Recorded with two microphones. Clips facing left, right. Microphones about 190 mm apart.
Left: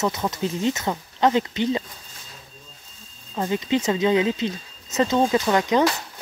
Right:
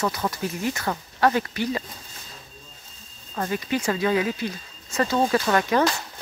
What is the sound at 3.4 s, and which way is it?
Speech, 20° left (ahead or behind).